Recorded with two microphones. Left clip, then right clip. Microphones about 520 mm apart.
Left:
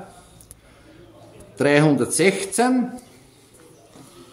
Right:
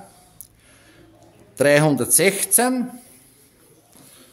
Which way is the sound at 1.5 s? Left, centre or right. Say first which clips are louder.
Right 1 dB; right.